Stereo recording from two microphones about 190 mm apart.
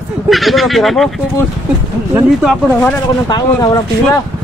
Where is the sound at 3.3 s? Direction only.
20° left (ahead or behind).